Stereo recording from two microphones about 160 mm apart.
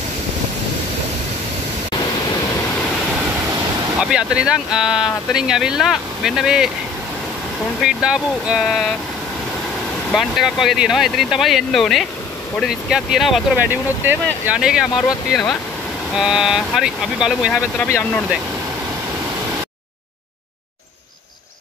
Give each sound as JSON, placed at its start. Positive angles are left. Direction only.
{"t": 4.0, "sound": "speech", "side_deg": -5}
{"t": 7.8, "sound": "speech", "side_deg": -5}
{"t": 10.1, "sound": "speech", "side_deg": 0}
{"t": 13.7, "sound": "speech", "side_deg": -10}
{"t": 17.7, "sound": "speech", "side_deg": 10}